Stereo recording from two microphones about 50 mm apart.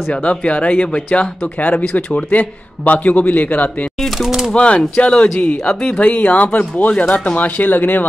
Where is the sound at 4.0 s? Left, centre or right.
Centre.